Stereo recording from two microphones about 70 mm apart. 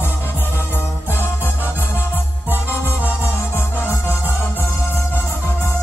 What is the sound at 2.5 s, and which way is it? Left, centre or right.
Music, left.